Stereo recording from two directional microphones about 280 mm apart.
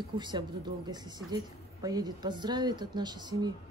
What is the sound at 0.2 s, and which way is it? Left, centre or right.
A woman's voice, centre.